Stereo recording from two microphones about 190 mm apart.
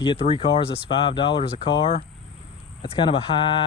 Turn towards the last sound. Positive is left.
turn(degrees=25)  # may be behind; listen again after turning